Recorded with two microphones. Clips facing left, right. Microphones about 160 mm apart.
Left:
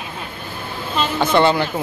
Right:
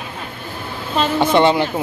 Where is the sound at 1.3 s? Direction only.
20° right (ahead or behind).